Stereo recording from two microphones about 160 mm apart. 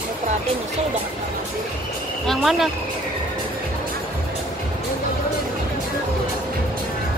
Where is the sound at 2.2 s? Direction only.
Centre (ahead or behind).